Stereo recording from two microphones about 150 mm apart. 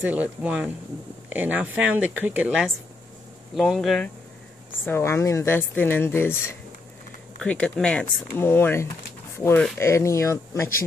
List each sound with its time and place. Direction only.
0.0 s speech: 10° right (ahead or behind)
4.8 s speech: 15° left (ahead or behind)